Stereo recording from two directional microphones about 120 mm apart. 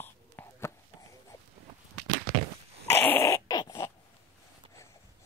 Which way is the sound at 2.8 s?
20° left (ahead or behind).